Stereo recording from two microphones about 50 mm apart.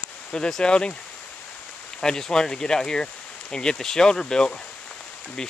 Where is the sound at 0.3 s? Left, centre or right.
Centre.